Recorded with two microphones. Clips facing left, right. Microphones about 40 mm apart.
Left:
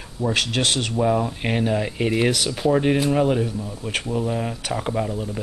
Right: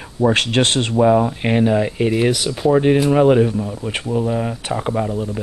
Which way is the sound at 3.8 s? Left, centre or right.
Centre.